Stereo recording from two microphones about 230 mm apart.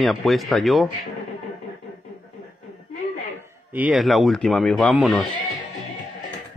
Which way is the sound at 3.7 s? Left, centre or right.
Centre.